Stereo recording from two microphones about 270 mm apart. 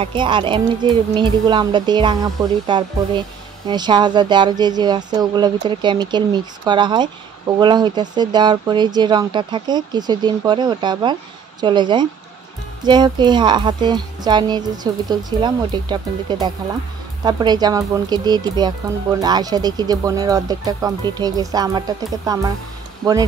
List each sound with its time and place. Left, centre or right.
0.0 s speech: centre